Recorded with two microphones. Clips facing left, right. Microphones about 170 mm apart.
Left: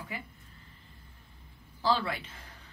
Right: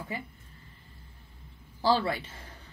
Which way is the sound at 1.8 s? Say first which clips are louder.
Right 3 dB; 30° right (ahead or behind).